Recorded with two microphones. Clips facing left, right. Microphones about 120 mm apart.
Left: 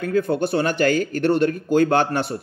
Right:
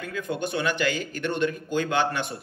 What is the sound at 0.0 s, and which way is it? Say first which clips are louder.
Speech: left 9 dB; 40° left (ahead or behind).